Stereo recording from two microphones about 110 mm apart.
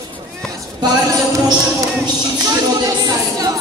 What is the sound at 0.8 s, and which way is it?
Speech, 40° right (ahead or behind).